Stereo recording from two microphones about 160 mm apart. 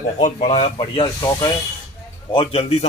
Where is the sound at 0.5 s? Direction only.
30° left (ahead or behind).